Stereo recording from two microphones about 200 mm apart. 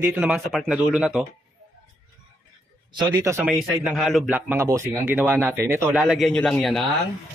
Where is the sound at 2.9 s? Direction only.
15° right (ahead or behind).